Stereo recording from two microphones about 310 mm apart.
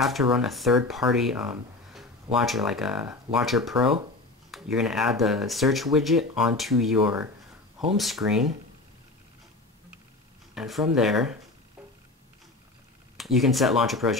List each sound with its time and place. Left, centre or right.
0.0 s speech: centre
10.5 s speech: centre
13.2 s speech: centre